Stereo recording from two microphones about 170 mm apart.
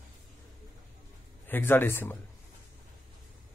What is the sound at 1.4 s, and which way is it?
Speech, 10° left (ahead or behind).